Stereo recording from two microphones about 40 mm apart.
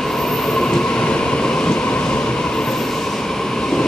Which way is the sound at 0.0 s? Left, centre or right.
Centre.